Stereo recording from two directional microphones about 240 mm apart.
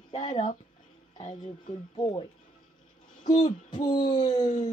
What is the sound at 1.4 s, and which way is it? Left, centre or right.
Speech, centre.